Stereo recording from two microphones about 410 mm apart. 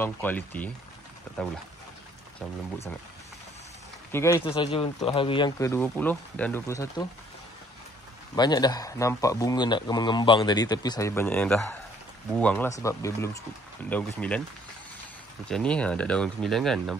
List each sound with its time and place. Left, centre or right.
0.0 s speech: centre
4.1 s speech: centre
8.4 s speech: centre
15.4 s speech: centre